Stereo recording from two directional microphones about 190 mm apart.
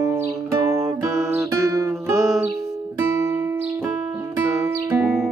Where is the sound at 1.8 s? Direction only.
15° right (ahead or behind).